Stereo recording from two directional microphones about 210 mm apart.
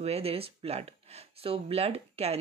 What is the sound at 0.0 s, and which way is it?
Speech, 30° right (ahead or behind).